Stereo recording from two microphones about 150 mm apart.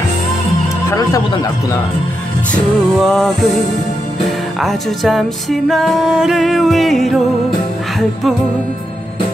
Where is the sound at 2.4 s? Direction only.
5° left (ahead or behind).